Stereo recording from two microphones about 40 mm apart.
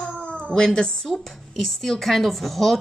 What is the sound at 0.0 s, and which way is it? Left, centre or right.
Cat, left.